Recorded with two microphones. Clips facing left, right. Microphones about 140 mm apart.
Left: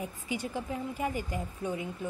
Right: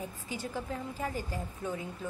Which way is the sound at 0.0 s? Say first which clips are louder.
Left 3 dB; 15° left (ahead or behind).